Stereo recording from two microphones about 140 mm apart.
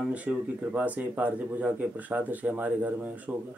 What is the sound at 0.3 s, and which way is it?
Speech, 10° right (ahead or behind).